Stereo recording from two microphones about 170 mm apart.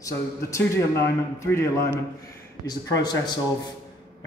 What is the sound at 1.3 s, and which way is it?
Speech, 15° left (ahead or behind).